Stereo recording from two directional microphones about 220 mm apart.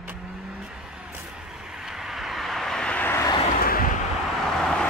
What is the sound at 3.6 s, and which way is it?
Vehicle, 40° left (ahead or behind).